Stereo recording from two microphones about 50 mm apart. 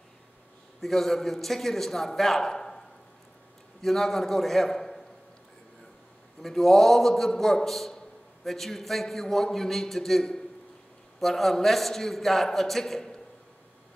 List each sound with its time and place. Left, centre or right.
0.7 s a man's voice: centre
3.8 s a man's voice: centre
6.4 s a man's voice: centre